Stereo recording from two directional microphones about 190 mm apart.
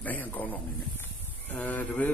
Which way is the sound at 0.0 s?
10° left (ahead or behind).